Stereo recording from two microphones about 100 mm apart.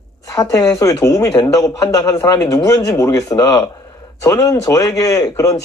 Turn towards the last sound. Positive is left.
turn(degrees=30)  # may be behind; listen again after turning